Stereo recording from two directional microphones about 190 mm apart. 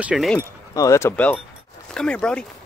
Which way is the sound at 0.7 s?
15° left (ahead or behind).